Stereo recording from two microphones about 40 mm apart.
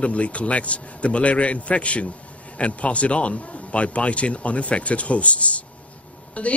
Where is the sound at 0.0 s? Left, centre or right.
Left.